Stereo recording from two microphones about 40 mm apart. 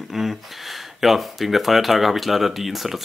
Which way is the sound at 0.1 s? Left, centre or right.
Centre.